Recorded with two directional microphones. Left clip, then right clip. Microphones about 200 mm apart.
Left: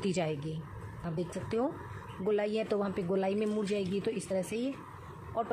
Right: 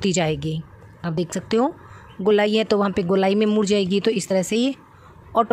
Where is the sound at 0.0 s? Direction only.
40° right (ahead or behind).